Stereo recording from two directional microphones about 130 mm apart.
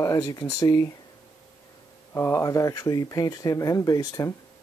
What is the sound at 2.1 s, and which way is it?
Speech, 20° left (ahead or behind).